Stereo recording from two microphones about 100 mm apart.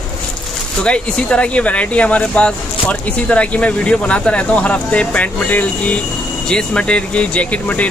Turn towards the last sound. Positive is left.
turn(degrees=15)  # may be behind; listen again after turning